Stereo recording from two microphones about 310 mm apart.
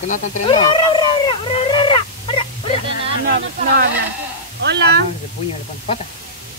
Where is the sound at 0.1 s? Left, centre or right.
Centre.